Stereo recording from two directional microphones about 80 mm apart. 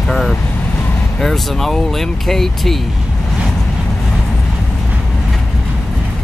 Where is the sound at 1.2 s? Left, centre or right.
Centre.